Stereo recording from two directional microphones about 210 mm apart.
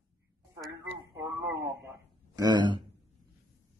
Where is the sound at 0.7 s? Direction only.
15° right (ahead or behind).